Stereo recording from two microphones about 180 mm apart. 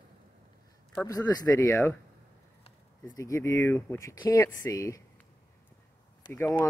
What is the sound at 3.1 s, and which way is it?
Speech, 20° left (ahead or behind).